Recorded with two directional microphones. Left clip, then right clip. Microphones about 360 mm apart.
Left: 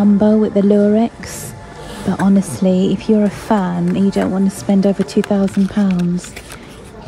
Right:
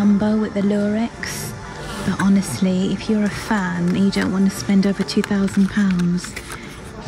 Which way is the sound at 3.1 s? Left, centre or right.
Left.